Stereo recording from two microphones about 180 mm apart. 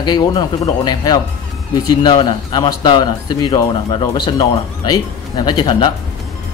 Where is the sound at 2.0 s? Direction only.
25° left (ahead or behind).